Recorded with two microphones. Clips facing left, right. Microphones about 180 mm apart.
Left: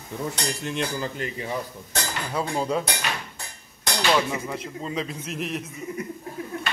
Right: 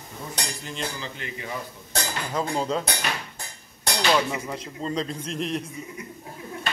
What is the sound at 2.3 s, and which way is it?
Speech, 10° left (ahead or behind).